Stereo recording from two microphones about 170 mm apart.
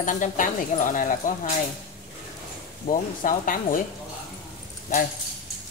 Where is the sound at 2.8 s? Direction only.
50° left (ahead or behind).